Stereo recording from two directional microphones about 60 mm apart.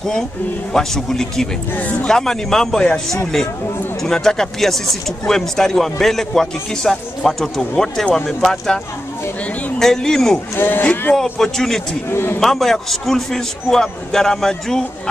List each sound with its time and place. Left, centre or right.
0.7 s speech: centre
1.8 s speech: left
2.0 s speech: centre
9.8 s speech: centre
10.5 s speech: left
10.8 s speech: left
11.3 s speech: centre
12.1 s speech: left
12.4 s speech: centre